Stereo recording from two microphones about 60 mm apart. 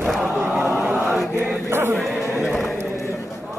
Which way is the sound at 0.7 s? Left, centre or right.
Right.